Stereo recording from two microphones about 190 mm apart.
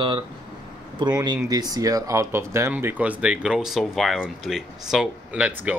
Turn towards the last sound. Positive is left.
turn(degrees=-10)  # may be behind; listen again after turning